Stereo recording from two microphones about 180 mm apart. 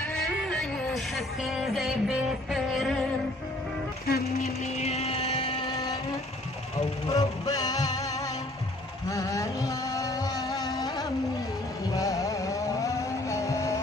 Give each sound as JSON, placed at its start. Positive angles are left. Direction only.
{"t": 0.1, "sound": "a sound", "side_deg": 0}
{"t": 1.1, "sound": "music", "side_deg": 0}
{"t": 4.1, "sound": "speech", "side_deg": 60}
{"t": 4.4, "sound": "music", "side_deg": 35}
{"t": 7.2, "sound": "music", "side_deg": 20}
{"t": 9.1, "sound": "music", "side_deg": 15}
{"t": 11.9, "sound": "vehicle", "side_deg": 20}